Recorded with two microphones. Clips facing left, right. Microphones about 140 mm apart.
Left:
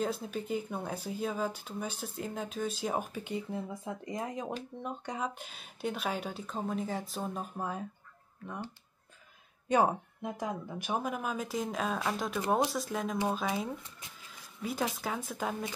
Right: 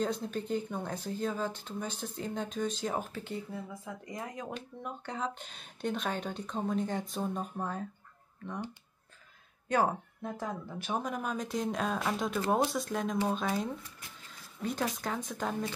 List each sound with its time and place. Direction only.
0.0 s speech: 5° left (ahead or behind)
3.5 s speech: 25° left (ahead or behind); by 8.6 s 10° left (ahead or behind)
9.7 s speech: 15° left (ahead or behind)